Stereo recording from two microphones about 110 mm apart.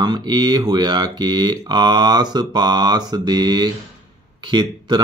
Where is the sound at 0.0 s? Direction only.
40° right (ahead or behind).